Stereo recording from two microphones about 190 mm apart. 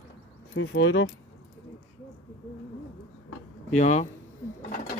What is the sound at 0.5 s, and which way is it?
Speech, 80° left.